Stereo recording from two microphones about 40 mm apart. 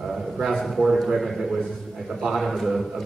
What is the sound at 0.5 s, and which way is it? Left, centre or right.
Speech, centre.